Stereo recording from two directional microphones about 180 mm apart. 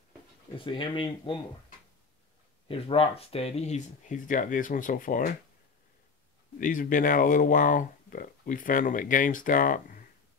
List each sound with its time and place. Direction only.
0.6 s speech: 30° left (ahead or behind)
2.7 s speech: 30° left (ahead or behind); by 5.3 s 50° left (ahead or behind)
6.6 s speech: 50° left (ahead or behind)